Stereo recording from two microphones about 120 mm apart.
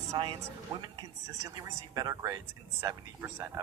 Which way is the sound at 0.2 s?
45° right (ahead or behind).